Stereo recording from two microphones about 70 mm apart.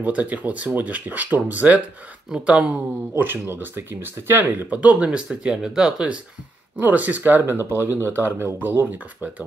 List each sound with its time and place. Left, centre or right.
0.0 s speech: right
3.6 s speech: right; by 6.1 s centre
6.8 s speech: right